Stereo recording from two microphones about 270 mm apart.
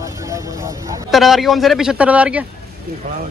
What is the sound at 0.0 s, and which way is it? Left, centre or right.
Vehicle, centre.